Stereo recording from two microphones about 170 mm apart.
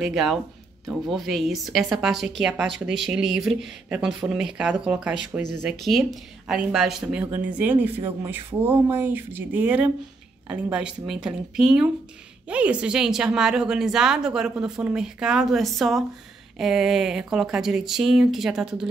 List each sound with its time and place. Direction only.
0.0 s speech: centre (ahead or behind)